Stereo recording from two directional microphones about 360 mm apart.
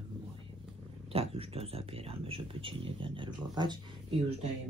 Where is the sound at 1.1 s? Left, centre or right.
Centre.